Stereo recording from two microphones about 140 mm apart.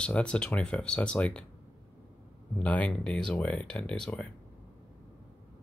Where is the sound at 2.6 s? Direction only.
10° left (ahead or behind).